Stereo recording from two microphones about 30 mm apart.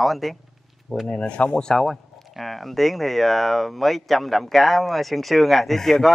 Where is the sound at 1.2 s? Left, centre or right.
Left.